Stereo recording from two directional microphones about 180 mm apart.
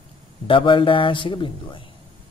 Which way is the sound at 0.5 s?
30° left (ahead or behind).